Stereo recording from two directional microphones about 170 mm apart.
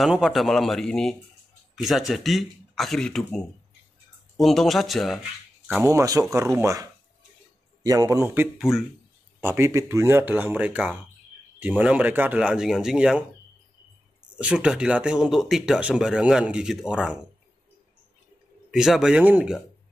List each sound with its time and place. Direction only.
0.0 s speech: centre (ahead or behind)
5.9 s a man's voice: 20° right (ahead or behind)
8.5 s speech: centre (ahead or behind)
9.4 s speech: 15° right (ahead or behind)
14.3 s speech: 5° right (ahead or behind)
18.7 s speech: 5° right (ahead or behind)